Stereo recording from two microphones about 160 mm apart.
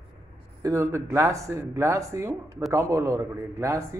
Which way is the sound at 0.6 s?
20° right (ahead or behind).